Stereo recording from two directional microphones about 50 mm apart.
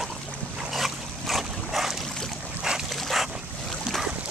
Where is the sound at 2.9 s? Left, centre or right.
Centre.